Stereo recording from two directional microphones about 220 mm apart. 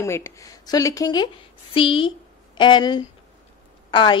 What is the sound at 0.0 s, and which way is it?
A woman's voice, 10° left (ahead or behind).